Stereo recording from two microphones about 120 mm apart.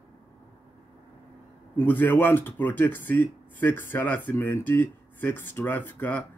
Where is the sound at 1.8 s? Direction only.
15° left (ahead or behind).